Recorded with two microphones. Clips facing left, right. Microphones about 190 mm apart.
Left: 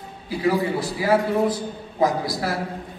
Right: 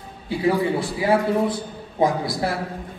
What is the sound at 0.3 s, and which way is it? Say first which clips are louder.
A man's voice: right 1 dB; 25° right (ahead or behind).